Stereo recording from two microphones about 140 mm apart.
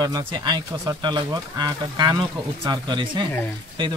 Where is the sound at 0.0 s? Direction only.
30° right (ahead or behind).